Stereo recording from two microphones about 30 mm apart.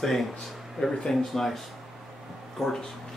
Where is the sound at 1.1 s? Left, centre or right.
Centre.